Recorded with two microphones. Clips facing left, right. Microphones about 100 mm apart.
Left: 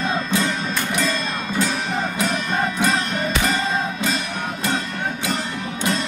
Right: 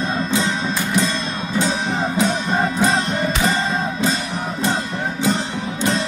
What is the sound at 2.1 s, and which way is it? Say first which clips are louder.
Music: right 5 dB; 25° right (ahead or behind).